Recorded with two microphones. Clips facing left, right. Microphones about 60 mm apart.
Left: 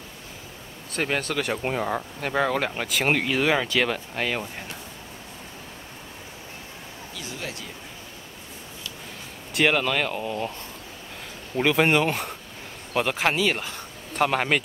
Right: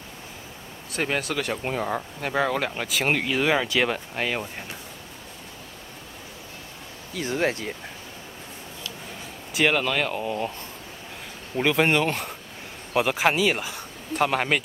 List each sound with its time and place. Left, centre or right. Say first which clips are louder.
0.9 s speech: even; centre
1.5 s speech: left 2 dB; centre
7.2 s speech: right 11 dB; right
9.5 s speech: left 1 dB; centre
11.5 s speech: left 1 dB; centre